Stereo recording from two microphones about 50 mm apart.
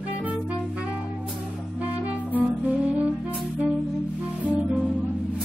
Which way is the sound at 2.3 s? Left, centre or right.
Right.